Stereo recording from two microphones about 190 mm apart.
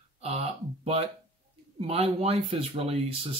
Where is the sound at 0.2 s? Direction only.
35° right (ahead or behind).